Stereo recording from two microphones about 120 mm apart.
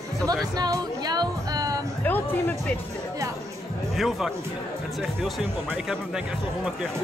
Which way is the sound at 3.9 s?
Centre (ahead or behind).